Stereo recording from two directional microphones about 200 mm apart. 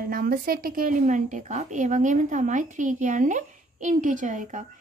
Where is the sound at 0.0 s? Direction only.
45° right (ahead or behind).